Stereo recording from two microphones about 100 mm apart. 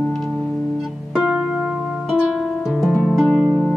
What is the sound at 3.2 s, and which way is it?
Harp, 10° right (ahead or behind).